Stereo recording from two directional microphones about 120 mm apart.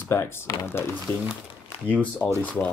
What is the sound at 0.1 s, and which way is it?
Speech, 20° left (ahead or behind).